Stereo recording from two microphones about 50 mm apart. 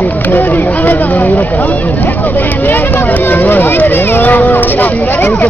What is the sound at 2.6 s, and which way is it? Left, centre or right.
Speech, left.